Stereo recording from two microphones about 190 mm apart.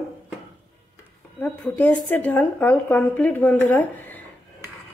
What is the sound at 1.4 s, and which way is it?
Speech, 10° left (ahead or behind).